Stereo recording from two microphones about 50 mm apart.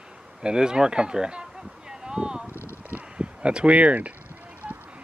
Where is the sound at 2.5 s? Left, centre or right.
Left.